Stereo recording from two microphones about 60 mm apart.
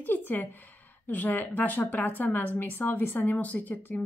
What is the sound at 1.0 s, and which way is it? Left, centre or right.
A woman's voice, left.